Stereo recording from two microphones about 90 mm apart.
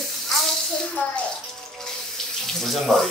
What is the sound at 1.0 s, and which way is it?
Speech, 20° left (ahead or behind).